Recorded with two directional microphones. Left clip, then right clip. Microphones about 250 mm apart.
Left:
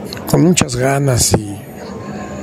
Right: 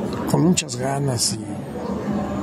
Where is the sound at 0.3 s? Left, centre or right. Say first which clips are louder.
Left 8 dB; left.